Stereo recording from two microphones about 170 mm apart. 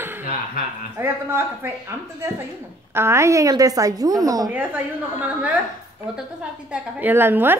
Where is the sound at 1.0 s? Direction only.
15° right (ahead or behind).